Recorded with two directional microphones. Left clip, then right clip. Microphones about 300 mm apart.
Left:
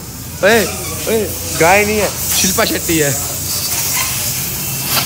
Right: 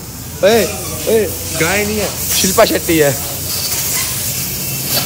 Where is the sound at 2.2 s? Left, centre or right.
Centre.